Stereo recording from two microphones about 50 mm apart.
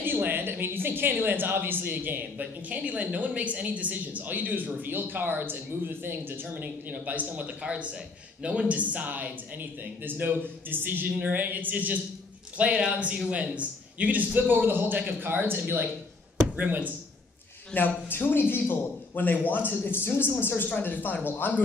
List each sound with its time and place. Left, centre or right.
0.0 s speech: right
6.5 s speech: right
12.5 s speech: right
16.5 s speech: right
17.7 s a man's voice: left